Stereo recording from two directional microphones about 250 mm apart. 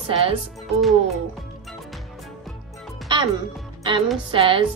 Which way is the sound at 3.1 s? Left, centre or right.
Centre.